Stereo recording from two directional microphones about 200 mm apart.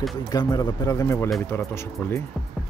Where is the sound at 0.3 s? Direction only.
20° left (ahead or behind).